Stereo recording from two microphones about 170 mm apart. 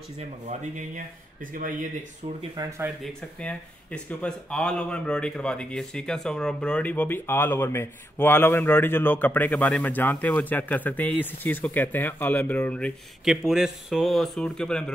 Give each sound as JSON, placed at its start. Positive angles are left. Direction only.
{"t": 0.5, "sound": "speech", "side_deg": -50}
{"t": 2.5, "sound": "speech", "side_deg": -20}
{"t": 3.0, "sound": "speech", "side_deg": 5}